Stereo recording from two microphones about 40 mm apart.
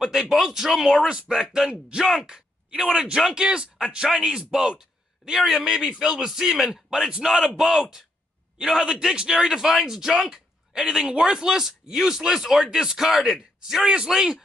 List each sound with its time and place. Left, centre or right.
0.0 s a man's voice: centre
1.0 s a man's voice: right
10.3 s a sound: centre
11.1 s a man's voice: right